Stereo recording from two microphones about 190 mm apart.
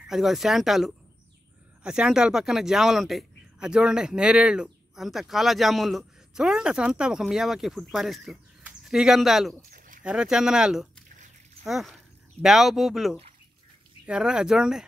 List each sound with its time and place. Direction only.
0.1 s speech: centre (ahead or behind)
9.7 s a sound: 45° right (ahead or behind)
10.0 s speech: 5° right (ahead or behind)